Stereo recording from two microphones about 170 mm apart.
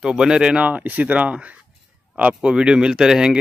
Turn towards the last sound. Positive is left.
turn(degrees=-5)  # may be behind; listen again after turning